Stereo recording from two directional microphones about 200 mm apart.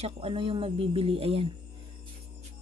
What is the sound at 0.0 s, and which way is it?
Speech, 25° right (ahead or behind).